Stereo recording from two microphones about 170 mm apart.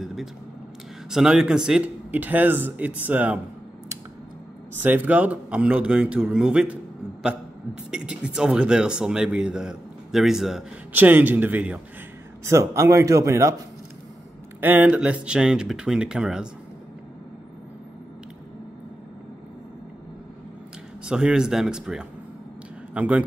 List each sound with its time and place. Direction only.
0.0 s vehicle: centre (ahead or behind)
1.1 s speech: 5° right (ahead or behind)
4.8 s speech: 10° right (ahead or behind)
7.9 s speech: 5° right (ahead or behind)
14.6 s speech: 10° right (ahead or behind)
21.0 s speech: 5° right (ahead or behind)